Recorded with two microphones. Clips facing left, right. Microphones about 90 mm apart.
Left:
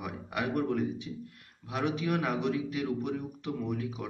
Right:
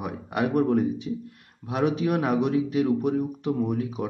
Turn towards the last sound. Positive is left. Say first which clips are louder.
# right 8 dB
turn(degrees=-30)  # may be behind; listen again after turning